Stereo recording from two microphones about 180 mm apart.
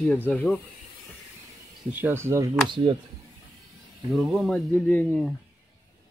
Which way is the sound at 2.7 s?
30° right (ahead or behind).